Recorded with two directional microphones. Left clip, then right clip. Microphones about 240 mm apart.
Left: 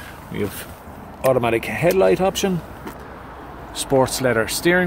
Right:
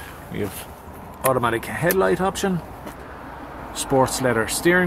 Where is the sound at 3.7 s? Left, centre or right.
Centre.